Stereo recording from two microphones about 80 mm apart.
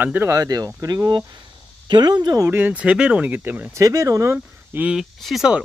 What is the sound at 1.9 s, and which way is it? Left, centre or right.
Speech, right.